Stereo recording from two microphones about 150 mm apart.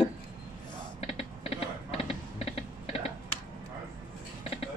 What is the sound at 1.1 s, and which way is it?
Typing, 40° left (ahead or behind).